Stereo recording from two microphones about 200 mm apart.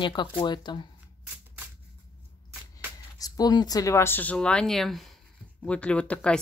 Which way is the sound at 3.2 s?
20° left (ahead or behind).